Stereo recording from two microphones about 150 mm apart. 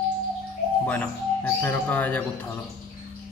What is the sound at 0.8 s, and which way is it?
Speech, 10° left (ahead or behind).